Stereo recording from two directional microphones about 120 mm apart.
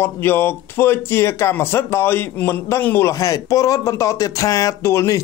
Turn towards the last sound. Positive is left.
turn(degrees=25)  # may be behind; listen again after turning